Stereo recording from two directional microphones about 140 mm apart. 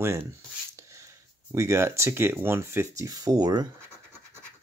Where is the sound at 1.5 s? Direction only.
20° right (ahead or behind).